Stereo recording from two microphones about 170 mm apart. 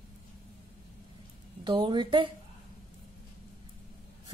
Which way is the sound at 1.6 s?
25° right (ahead or behind).